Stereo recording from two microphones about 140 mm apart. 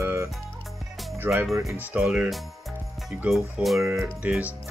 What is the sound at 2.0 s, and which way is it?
Speech, 5° right (ahead or behind).